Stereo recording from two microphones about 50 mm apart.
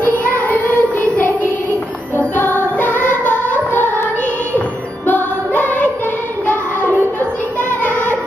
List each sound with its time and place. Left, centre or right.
0.0 s child singing: left
2.3 s music: left
6.4 s child singing: left